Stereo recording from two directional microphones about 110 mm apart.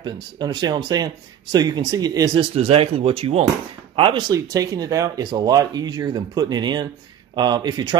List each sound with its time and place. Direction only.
0.0 s speech: 40° right (ahead or behind)
2.5 s speech: 60° right (ahead or behind)
4.3 s speech: 35° right (ahead or behind)